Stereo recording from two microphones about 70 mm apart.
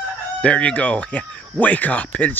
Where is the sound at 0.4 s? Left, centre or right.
Centre.